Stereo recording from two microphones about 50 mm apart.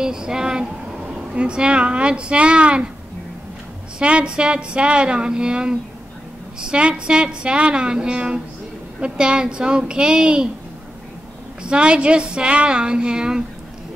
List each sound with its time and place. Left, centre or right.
0.0 s speech: centre
4.0 s a woman's voice: right
11.6 s speech: centre